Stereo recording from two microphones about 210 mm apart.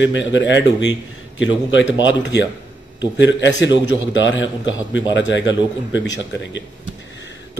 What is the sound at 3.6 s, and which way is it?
Speech, 60° left (ahead or behind).